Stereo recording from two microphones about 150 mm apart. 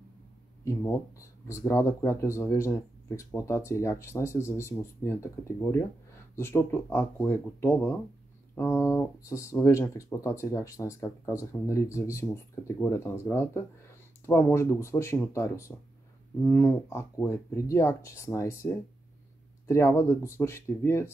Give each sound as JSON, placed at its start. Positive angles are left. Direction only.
{"t": 0.7, "sound": "speech", "side_deg": 20}
{"t": 19.7, "sound": "speech", "side_deg": 15}